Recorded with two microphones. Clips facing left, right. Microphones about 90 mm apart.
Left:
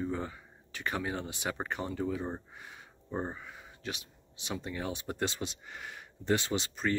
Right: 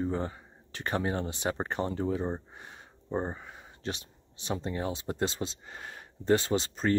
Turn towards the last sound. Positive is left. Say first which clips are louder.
# right 4 dB
turn(degrees=-35)  # may be behind; listen again after turning